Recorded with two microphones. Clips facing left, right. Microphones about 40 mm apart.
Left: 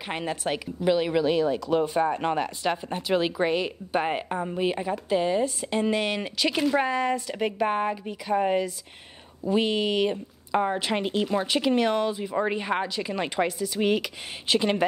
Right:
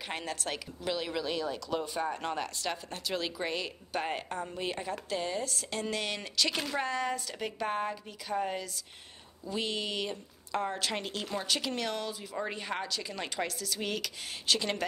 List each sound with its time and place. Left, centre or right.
0.1 s speech: centre